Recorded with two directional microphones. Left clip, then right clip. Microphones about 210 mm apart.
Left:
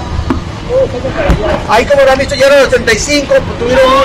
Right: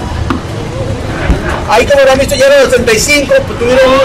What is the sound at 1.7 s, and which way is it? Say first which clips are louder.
A man's voice: right 1 dB; 10° right (ahead or behind).